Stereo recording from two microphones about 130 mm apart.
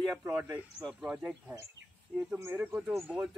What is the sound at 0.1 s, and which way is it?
Speech, 15° right (ahead or behind).